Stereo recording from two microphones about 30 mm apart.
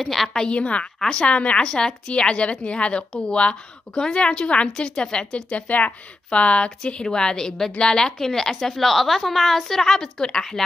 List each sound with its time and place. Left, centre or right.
0.0 s a woman's voice: centre
0.5 s speech: left
1.7 s speech: left
5.7 s speech: left
6.3 s a woman's voice: left
8.2 s a woman's voice: centre